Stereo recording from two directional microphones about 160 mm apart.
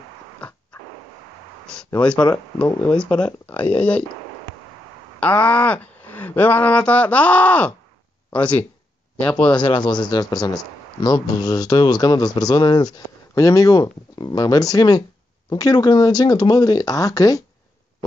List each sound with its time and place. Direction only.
0.4 s dog: 5° left (ahead or behind)
2.0 s speech: 5° left (ahead or behind)
5.2 s speech: 5° left (ahead or behind)
9.6 s speech: 30° left (ahead or behind)